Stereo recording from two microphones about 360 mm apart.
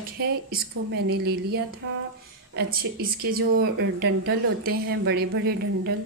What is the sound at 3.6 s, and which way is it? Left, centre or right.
A woman's voice, right.